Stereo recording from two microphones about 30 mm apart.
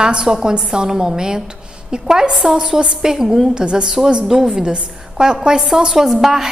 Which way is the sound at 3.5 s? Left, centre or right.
Right.